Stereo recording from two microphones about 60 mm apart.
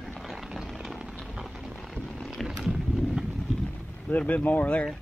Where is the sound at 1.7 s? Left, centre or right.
Centre.